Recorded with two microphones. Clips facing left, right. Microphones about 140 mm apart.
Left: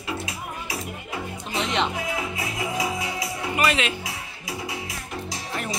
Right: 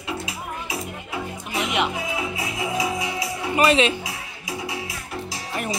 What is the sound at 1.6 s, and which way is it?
Music, 10° right (ahead or behind).